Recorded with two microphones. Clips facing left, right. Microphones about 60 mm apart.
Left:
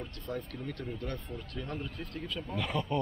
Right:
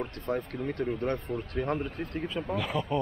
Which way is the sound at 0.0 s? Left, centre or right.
Right.